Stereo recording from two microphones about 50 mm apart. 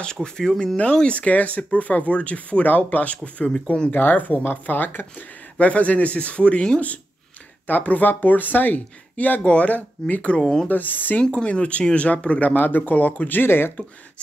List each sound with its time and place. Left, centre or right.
0.0 s speech: centre
1.0 s speech: left
3.9 s speech: left
5.6 s speech: left
7.6 s speech: left
10.4 s speech: centre
10.7 s speech: left
11.2 s speech: left